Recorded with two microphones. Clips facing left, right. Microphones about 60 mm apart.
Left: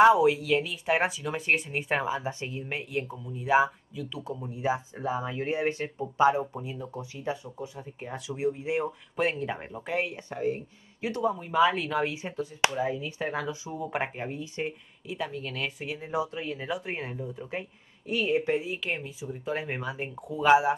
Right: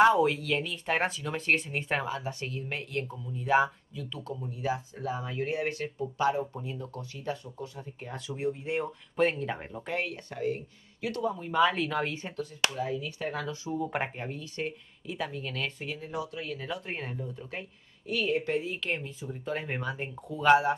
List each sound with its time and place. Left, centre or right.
0.0 s speech: centre
12.3 s speech: centre
13.7 s speech: centre
15.0 s speech: centre; by 16.6 s left
16.6 s speech: centre